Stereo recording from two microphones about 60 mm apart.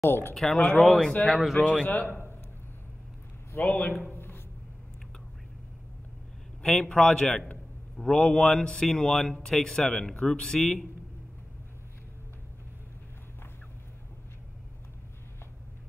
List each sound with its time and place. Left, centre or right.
0.0 s speech: left
0.3 s speech: centre
1.9 s a man's voice: left
3.5 s a man's voice: left
4.1 s a sound: left
6.6 s speech: centre